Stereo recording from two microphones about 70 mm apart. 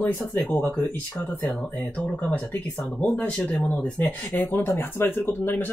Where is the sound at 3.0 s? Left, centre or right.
Centre.